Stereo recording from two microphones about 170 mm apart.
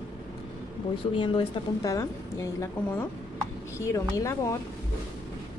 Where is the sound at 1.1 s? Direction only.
30° left (ahead or behind).